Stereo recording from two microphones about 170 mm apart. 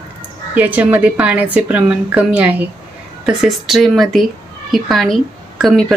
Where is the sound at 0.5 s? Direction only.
10° right (ahead or behind).